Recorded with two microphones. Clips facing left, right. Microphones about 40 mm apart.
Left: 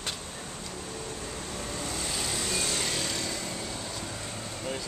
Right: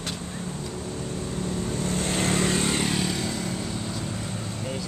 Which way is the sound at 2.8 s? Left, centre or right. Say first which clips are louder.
Right 5 dB; centre.